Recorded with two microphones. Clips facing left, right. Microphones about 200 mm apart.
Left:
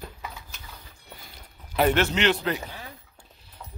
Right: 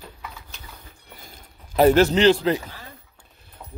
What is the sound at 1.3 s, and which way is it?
Speech, 40° right (ahead or behind).